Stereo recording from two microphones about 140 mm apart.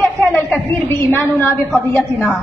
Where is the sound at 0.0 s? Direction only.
15° left (ahead or behind).